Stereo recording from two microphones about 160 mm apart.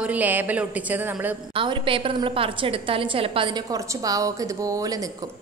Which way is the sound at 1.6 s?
35° right (ahead or behind).